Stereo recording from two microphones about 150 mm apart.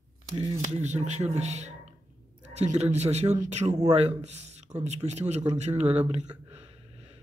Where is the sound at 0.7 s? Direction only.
50° right (ahead or behind).